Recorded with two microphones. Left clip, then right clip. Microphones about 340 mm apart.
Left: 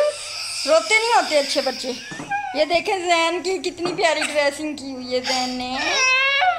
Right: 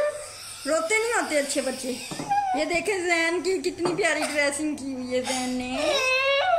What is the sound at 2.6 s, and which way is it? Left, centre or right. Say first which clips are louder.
A woman's voice: left 6 dB; centre.